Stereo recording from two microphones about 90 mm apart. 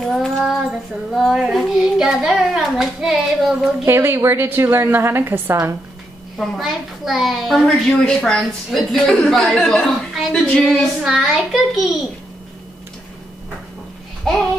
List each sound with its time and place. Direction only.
0.0 s child singing: centre (ahead or behind)
1.1 s a child's voice: 5° right (ahead or behind)
3.8 s a woman's voice: 25° right (ahead or behind)
6.3 s a child's voice: centre (ahead or behind)